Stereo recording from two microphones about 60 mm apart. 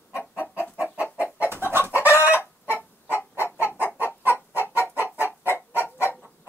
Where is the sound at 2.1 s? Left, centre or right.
Left.